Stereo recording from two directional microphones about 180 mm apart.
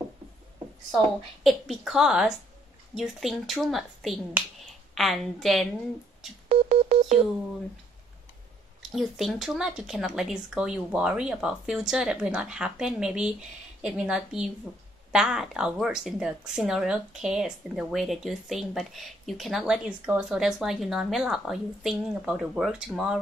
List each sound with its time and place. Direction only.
0.9 s speech: centre (ahead or behind)
6.5 s telephone dialing: 35° right (ahead or behind)
8.9 s speech: centre (ahead or behind)